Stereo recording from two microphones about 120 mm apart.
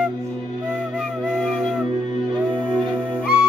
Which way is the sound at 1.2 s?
10° left (ahead or behind).